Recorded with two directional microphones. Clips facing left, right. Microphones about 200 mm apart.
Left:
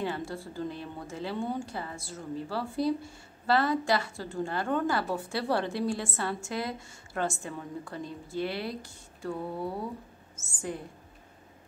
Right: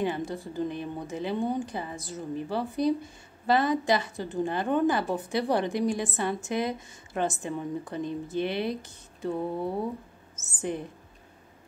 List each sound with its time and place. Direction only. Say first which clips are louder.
0.0 s a woman's voice: right 4 dB; 20° right (ahead or behind)